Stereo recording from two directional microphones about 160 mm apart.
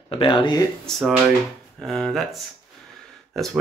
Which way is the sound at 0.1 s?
35° left (ahead or behind).